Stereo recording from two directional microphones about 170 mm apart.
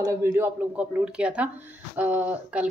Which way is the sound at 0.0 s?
15° right (ahead or behind).